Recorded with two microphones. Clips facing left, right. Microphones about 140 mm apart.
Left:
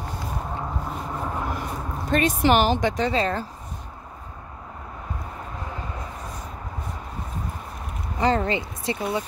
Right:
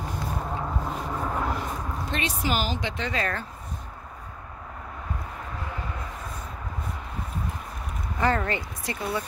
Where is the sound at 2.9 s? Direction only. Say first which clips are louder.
Left 6 dB; 35° left (ahead or behind).